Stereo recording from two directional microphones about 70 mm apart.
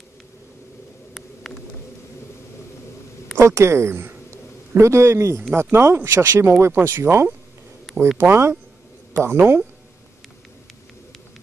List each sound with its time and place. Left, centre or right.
3.3 s a woman's voice: right
4.3 s a sound: right
5.5 s speech: right